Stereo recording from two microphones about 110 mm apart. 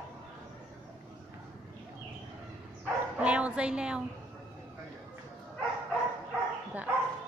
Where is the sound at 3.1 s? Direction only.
10° right (ahead or behind).